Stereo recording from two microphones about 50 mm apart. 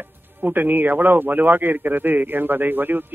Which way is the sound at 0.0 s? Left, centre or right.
Right.